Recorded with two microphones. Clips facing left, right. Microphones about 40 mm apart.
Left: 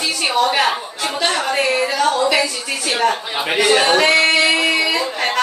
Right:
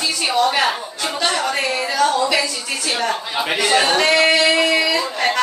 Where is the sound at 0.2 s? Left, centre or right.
Centre.